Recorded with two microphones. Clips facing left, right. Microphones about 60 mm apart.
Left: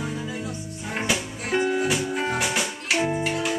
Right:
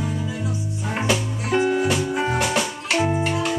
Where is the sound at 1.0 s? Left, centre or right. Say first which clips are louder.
Right 4 dB; centre.